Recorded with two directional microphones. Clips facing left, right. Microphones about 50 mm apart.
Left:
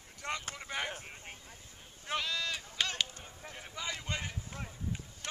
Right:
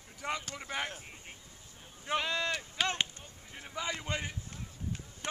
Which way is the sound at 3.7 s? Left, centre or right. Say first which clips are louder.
Right 3 dB; centre.